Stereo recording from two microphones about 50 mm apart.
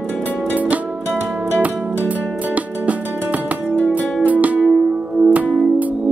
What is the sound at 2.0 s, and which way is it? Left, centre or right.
Music, right.